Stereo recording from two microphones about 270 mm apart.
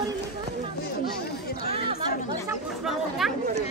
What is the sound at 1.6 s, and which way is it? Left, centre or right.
Chatter, right.